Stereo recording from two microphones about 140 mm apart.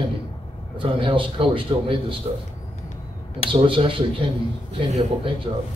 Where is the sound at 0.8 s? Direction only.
40° right (ahead or behind).